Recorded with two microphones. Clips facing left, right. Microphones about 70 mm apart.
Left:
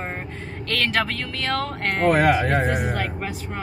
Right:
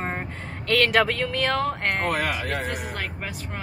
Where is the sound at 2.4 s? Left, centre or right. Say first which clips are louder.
Left 7 dB; left.